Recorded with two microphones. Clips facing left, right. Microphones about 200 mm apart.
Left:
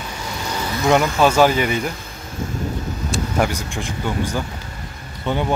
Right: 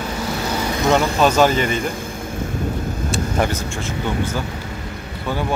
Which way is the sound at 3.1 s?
10° left (ahead or behind).